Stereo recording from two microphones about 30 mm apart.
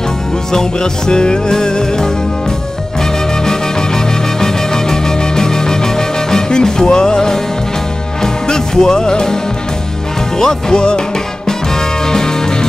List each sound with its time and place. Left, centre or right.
0.5 s music: left
4.4 s music: centre
10.4 s music: left